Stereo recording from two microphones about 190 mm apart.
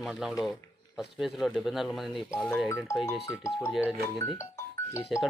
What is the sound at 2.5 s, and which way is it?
Speech, 10° left (ahead or behind).